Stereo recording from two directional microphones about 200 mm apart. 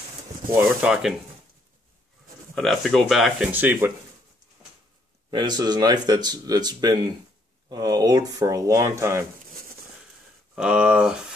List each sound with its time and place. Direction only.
0.5 s speech: 10° right (ahead or behind)
2.5 s speech: 5° left (ahead or behind)
5.3 s speech: 20° right (ahead or behind)
10.5 s speech: 5° right (ahead or behind)